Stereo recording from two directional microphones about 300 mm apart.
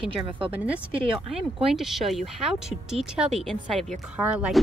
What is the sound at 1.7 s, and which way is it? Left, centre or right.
Speech, centre.